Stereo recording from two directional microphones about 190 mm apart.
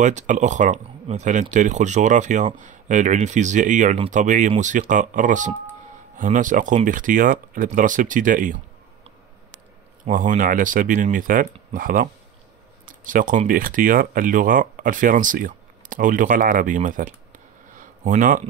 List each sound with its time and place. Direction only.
0.0 s speech: 40° right (ahead or behind)
10.0 s speech: 45° right (ahead or behind)
17.7 s a sound: 45° right (ahead or behind)